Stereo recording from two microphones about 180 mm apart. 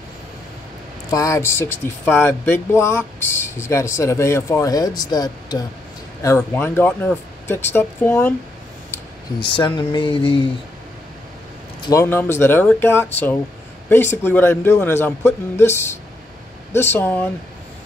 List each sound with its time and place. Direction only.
1.1 s speech: 15° left (ahead or behind)
9.4 s speech: 25° left (ahead or behind)
11.8 s speech: 15° left (ahead or behind)